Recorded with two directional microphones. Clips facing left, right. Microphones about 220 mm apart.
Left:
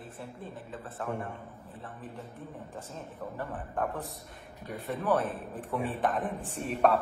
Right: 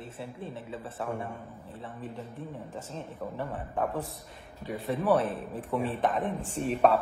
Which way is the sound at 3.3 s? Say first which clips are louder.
Right 1 dB; centre (ahead or behind).